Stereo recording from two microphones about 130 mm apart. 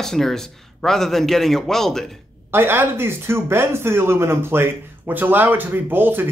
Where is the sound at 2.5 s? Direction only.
15° right (ahead or behind).